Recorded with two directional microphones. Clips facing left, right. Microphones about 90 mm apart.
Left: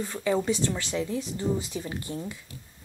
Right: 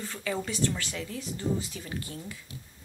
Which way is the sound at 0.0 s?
20° left (ahead or behind).